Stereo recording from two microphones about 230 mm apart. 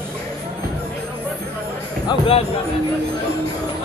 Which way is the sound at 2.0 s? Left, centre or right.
Left.